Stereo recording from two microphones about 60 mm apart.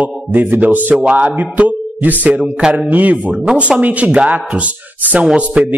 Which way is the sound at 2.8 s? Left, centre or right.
Right.